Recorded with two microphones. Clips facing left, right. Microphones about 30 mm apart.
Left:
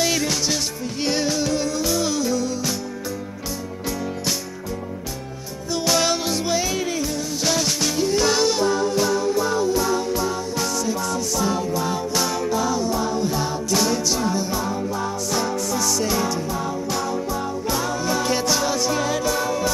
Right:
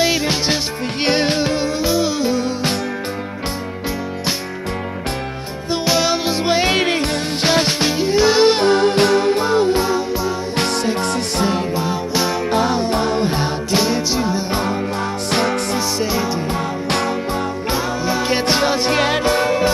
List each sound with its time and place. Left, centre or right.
0.0 s music: right
1.0 s music: right
5.9 s music: right
6.4 s music: right
6.7 s music: right
7.4 s music: right
8.5 s music: right
9.8 s music: right
10.6 s music: right
15.3 s music: right
16.0 s music: right
17.6 s music: right
18.5 s music: right